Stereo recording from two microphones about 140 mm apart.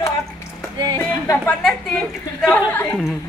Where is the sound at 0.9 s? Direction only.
20° left (ahead or behind).